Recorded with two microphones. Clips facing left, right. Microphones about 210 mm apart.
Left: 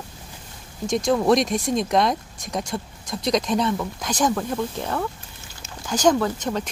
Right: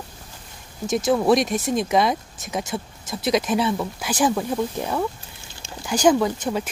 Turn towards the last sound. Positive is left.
turn(degrees=-10)  # may be behind; listen again after turning